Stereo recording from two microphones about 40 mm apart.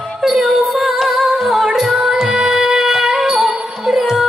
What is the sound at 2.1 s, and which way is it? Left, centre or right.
Music, centre.